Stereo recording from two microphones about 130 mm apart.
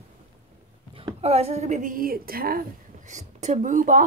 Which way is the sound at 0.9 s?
50° right (ahead or behind).